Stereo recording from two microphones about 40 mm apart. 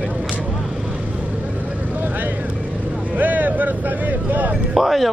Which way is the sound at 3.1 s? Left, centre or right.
Right.